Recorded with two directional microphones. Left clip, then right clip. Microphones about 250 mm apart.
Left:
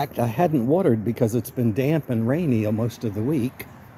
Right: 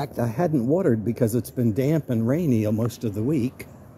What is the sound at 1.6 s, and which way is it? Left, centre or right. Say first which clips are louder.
Speech: left 1 dB; centre.